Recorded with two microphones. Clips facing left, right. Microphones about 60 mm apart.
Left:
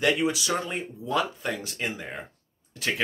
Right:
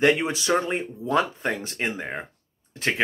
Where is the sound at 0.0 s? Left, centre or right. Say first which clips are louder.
Right 3 dB; right.